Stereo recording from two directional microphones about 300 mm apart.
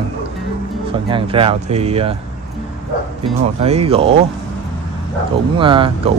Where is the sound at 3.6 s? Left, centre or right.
Centre.